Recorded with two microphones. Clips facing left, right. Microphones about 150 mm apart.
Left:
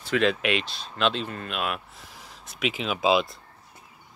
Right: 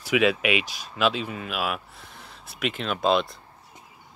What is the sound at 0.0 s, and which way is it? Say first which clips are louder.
Speech: right 2 dB; 10° right (ahead or behind).